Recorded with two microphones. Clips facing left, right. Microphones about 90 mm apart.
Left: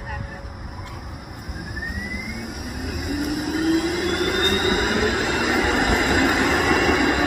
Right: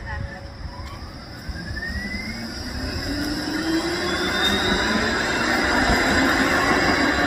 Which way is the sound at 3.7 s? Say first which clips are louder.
Left 1 dB; 15° right (ahead or behind).